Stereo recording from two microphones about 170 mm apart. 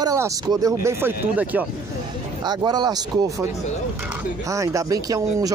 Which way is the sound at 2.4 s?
25° right (ahead or behind).